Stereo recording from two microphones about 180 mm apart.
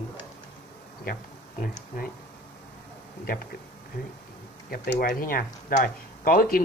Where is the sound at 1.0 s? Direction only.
55° left (ahead or behind).